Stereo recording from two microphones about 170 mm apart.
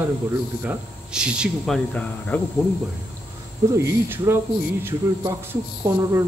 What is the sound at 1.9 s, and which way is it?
Speech, 10° left (ahead or behind).